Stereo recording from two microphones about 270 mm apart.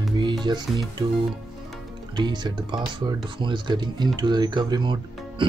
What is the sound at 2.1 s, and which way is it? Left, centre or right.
Speech, centre.